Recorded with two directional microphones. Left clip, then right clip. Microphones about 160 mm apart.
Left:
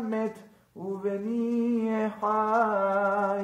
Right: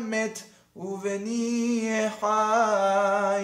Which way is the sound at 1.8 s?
10° right (ahead or behind).